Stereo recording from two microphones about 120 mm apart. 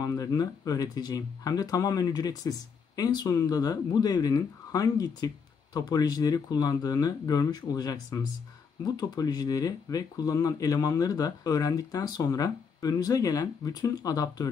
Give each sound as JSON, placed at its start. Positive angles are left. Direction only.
{"t": 0.0, "sound": "speech", "side_deg": 25}